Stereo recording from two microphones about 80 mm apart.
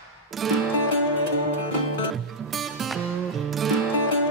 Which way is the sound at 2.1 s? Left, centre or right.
Centre.